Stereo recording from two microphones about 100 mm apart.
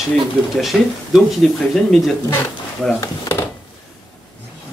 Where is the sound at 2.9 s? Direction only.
40° left (ahead or behind).